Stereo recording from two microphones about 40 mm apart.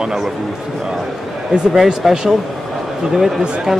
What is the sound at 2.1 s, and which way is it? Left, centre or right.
Speech, centre.